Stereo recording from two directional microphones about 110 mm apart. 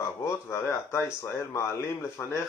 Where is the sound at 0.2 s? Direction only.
25° left (ahead or behind).